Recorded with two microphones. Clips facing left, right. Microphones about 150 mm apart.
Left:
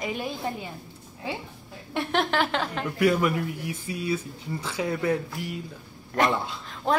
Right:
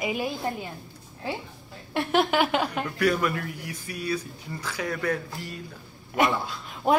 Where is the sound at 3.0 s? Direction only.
20° left (ahead or behind).